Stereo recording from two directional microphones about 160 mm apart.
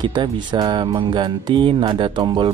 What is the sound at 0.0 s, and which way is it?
Speech, 30° right (ahead or behind).